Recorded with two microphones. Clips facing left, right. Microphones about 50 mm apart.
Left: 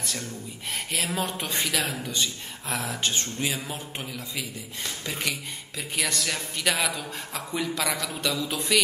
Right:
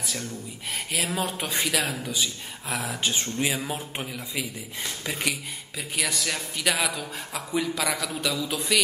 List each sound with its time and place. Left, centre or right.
0.0 s speech: centre